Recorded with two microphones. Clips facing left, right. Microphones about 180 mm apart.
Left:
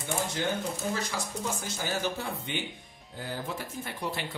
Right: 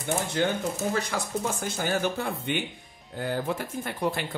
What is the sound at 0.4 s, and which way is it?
Speech, 60° right (ahead or behind).